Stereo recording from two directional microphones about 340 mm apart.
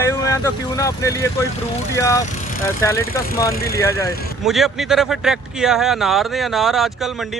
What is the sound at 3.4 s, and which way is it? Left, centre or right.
Speech, left.